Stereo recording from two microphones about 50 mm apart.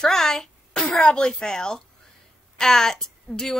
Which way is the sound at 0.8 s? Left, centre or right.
Left.